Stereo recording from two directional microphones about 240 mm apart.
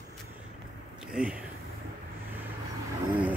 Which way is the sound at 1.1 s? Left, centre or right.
Centre.